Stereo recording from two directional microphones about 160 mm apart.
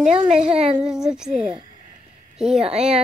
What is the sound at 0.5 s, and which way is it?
Speech, 40° right (ahead or behind).